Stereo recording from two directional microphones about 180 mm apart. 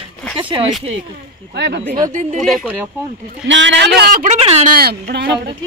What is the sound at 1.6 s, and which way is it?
Speech, 65° right (ahead or behind).